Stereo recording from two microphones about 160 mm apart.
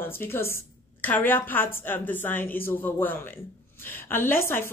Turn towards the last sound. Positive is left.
turn(degrees=15)  # may be behind; listen again after turning